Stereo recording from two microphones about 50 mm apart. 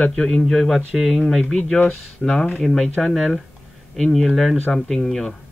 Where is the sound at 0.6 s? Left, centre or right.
Centre.